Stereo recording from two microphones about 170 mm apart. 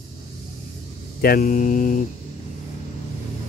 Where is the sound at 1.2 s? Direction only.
60° left (ahead or behind).